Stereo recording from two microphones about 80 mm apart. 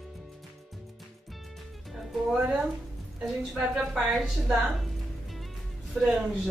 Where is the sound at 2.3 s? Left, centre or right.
Centre.